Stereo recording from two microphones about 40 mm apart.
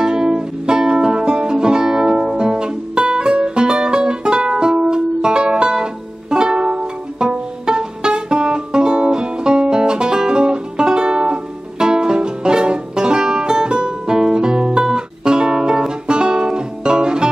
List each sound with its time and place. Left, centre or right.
0.0 s music: centre